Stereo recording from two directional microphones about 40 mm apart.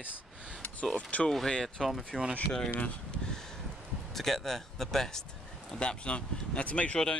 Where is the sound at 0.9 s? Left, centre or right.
Left.